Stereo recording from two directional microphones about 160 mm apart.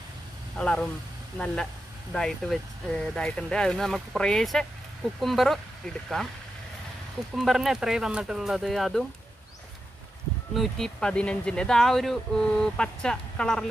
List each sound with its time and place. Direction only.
0.6 s speech: 5° left (ahead or behind)
7.3 s speech: centre (ahead or behind)
10.5 s speech: centre (ahead or behind)